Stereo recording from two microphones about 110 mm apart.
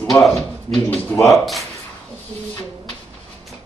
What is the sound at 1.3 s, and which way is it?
Speech, centre (ahead or behind).